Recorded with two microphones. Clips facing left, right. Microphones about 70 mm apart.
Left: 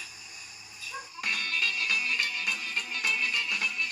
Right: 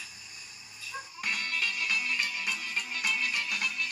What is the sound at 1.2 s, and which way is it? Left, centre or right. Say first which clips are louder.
Music: left 2 dB; centre.